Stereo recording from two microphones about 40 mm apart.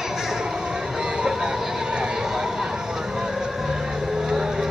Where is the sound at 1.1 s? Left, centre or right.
Centre.